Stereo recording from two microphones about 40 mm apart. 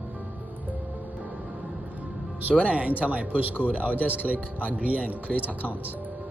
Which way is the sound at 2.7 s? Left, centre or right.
Right.